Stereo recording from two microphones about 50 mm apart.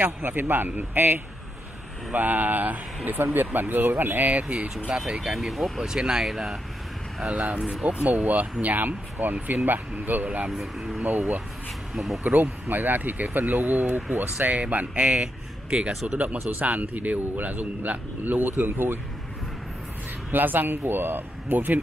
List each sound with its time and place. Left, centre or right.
0.2 s a man's voice: right
4.3 s speech: right
4.8 s speech: centre
5.8 s speech: centre
7.2 s speech: right
10.5 s speech: centre
11.1 s speech: right
11.9 s speech: centre
12.3 s a man's voice: right
20.2 s speech: right